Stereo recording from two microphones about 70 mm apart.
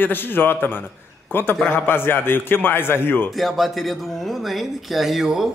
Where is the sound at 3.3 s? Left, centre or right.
Centre.